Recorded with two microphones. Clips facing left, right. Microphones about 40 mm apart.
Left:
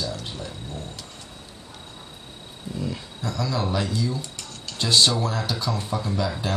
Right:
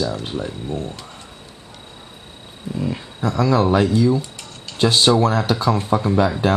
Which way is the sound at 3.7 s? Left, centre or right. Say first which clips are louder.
Right 10 dB; right.